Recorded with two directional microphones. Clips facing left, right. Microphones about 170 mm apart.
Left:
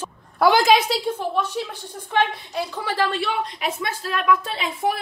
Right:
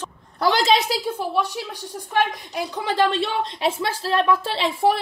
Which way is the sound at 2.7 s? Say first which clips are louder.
Right 4 dB; 20° right (ahead or behind).